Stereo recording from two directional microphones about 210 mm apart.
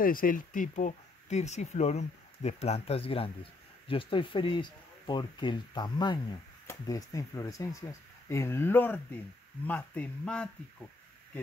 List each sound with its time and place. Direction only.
0.0 s speech: 40° left (ahead or behind); by 10.5 s 5° left (ahead or behind)